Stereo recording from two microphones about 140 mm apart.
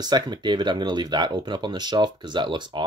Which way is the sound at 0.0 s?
30° right (ahead or behind).